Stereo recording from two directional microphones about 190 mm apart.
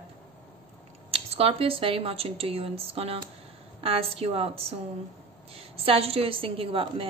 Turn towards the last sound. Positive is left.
turn(degrees=-30)  # may be behind; listen again after turning